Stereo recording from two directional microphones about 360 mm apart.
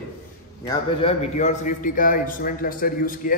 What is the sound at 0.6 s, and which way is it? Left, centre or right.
A man's voice, centre.